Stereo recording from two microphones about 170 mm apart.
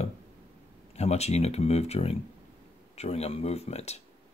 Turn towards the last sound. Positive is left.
turn(degrees=40)  # may be behind; listen again after turning